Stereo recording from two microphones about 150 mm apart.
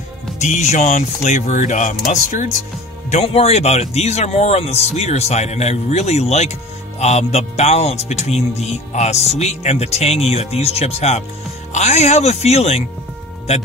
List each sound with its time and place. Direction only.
0.4 s speech: 50° left (ahead or behind)